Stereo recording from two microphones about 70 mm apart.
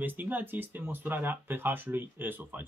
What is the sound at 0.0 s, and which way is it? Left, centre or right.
Speech, right.